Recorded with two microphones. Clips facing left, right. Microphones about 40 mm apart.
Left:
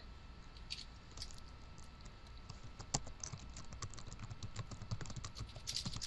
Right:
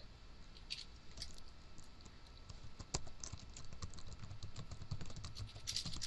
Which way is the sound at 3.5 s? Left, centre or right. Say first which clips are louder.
Left 3 dB; left.